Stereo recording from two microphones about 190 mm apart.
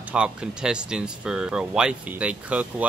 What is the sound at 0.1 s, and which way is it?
Speech, 5° right (ahead or behind).